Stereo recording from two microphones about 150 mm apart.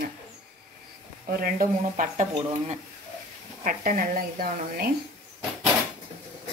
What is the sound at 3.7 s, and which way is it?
A woman's voice, 70° right (ahead or behind).